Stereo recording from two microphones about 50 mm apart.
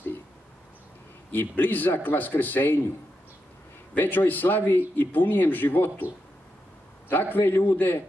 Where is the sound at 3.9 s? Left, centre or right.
Left.